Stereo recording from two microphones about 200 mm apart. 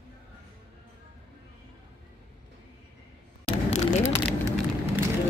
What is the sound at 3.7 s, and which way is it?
Vehicle, 35° left (ahead or behind).